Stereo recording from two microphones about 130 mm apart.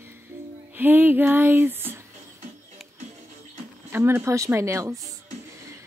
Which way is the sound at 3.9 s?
20° right (ahead or behind).